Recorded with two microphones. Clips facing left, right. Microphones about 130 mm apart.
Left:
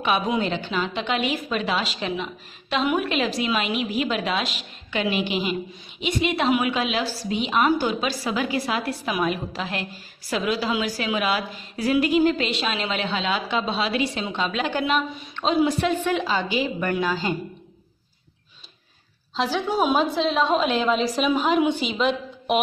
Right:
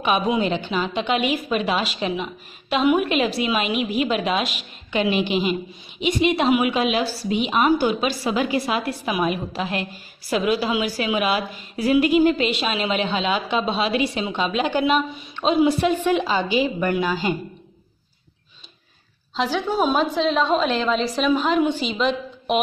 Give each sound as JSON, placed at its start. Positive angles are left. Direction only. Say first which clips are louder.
{"t": 0.4, "sound": "a woman's voice", "louder": "right 3 dB", "side_deg": -15}
{"t": 19.3, "sound": "a woman's voice", "louder": "right 1 dB", "side_deg": 0}